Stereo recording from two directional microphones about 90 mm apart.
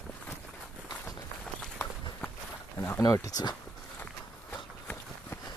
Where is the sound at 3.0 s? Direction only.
40° left (ahead or behind).